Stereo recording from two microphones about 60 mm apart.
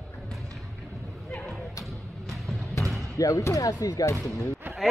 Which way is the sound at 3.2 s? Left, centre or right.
Left.